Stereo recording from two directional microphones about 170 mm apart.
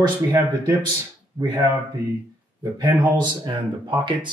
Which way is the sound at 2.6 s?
25° right (ahead or behind).